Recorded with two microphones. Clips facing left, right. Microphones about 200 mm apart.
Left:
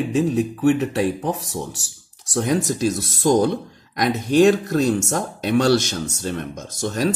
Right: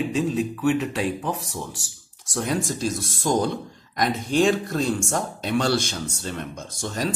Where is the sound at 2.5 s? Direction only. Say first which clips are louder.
Left 5 dB; 45° left (ahead or behind).